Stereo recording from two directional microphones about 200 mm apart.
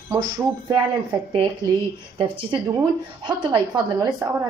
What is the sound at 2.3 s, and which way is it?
A woman's voice, 25° right (ahead or behind).